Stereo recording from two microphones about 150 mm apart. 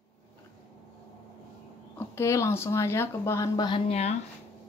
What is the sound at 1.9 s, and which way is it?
Speech, 20° left (ahead or behind).